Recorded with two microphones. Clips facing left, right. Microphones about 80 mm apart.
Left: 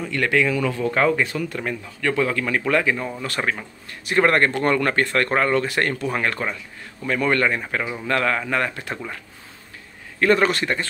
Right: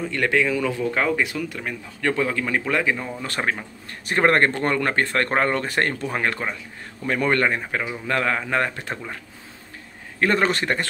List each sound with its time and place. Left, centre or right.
0.1 s a man's voice: centre
1.0 s speech: centre
2.0 s speech: right
2.2 s a man's voice: centre
4.1 s speech: right
6.0 s a man's voice: centre
10.2 s speech: right